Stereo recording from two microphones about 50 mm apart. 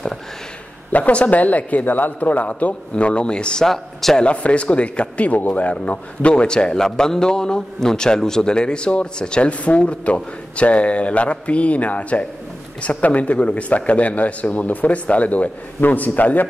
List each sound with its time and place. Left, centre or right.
0.9 s speech: left
3.6 s speech: centre
4.2 s speech: left